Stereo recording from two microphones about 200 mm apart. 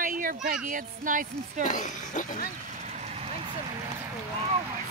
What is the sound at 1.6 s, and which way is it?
Speech, 40° left (ahead or behind).